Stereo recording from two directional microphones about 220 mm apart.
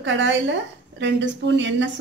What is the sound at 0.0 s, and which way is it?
Speech, 55° right (ahead or behind).